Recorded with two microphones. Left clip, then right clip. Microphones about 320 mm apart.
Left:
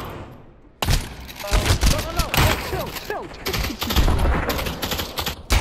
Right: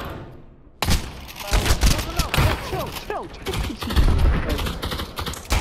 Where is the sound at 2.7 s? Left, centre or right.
Centre.